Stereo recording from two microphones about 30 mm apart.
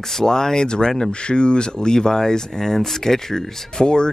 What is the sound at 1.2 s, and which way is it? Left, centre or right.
Speech, left.